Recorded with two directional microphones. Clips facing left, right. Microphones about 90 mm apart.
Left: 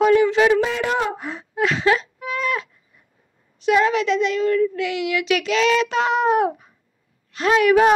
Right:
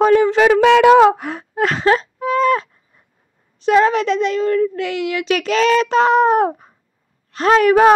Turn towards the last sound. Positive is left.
turn(degrees=-40)  # may be behind; listen again after turning